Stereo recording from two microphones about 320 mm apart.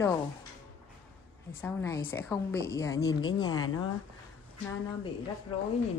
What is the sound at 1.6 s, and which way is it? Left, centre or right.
Speech, centre.